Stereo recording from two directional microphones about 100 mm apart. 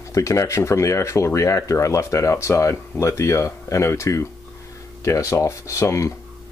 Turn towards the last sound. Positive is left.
turn(degrees=30)  # may be behind; listen again after turning